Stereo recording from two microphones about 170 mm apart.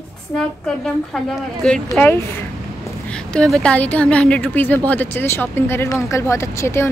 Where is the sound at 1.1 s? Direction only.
5° left (ahead or behind).